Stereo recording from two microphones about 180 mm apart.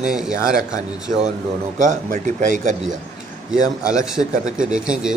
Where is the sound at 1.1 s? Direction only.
45° right (ahead or behind).